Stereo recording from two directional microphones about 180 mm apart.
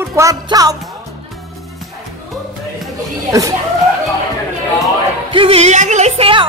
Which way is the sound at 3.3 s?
15° right (ahead or behind).